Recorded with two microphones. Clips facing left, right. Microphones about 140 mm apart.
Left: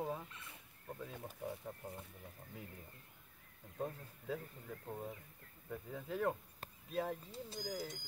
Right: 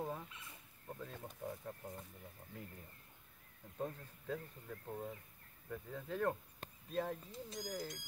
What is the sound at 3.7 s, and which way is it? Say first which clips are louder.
Speech: even; 5° left (ahead or behind).